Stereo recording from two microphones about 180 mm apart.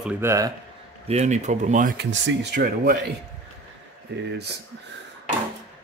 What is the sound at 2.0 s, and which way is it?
Speech, 65° right (ahead or behind).